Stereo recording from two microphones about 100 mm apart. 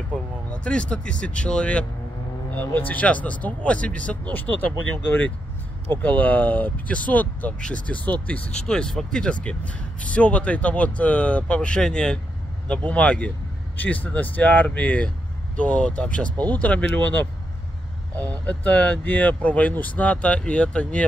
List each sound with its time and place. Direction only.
0.5 s speech: 10° left (ahead or behind)
6.0 s speech: 15° left (ahead or behind)